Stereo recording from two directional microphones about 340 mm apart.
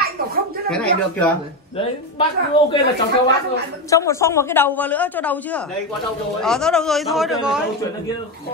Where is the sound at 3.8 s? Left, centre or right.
Centre.